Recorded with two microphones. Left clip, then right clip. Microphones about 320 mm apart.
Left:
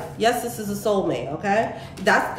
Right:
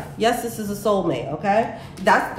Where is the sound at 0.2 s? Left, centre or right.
Centre.